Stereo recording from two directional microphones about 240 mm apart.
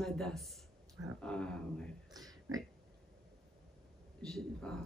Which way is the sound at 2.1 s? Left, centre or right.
Centre.